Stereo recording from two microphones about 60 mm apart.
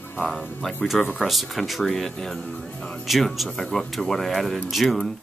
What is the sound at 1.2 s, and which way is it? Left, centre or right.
Speech, centre.